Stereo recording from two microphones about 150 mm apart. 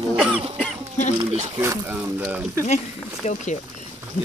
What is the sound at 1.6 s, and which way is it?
Speech, 15° right (ahead or behind).